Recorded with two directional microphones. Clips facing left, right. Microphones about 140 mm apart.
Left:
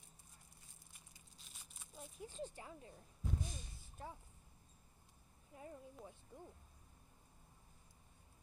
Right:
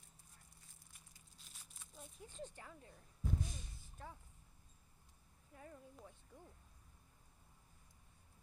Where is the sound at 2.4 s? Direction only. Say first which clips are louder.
Left 1 dB; 15° left (ahead or behind).